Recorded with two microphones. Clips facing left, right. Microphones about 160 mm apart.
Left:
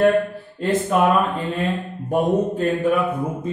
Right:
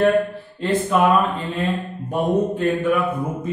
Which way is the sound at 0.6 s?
45° left (ahead or behind).